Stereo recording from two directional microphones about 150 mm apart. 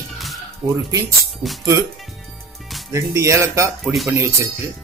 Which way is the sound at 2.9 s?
20° right (ahead or behind).